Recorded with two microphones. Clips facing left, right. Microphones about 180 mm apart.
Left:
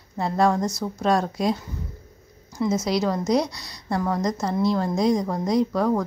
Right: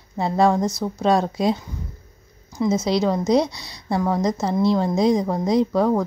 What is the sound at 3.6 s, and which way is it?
Speech, 5° right (ahead or behind).